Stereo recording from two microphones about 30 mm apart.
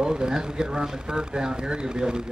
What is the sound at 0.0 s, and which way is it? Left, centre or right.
Speech, right.